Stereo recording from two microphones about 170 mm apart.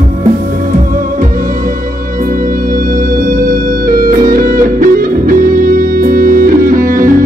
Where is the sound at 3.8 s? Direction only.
55° right (ahead or behind).